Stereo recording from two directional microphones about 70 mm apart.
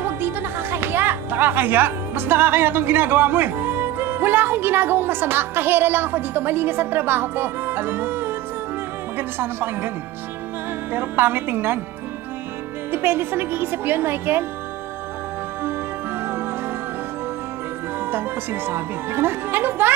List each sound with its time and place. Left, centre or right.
0.0 s a woman's voice: right
10.9 s a woman's voice: right
12.9 s a woman's voice: right
18.0 s a woman's voice: right